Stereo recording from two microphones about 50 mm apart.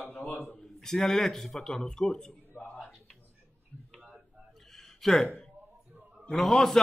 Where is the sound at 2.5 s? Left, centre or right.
Left.